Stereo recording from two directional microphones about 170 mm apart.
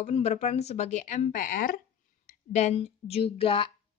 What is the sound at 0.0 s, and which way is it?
Speech, 40° left (ahead or behind).